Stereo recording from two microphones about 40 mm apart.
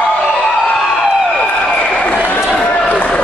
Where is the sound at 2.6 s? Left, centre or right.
Left.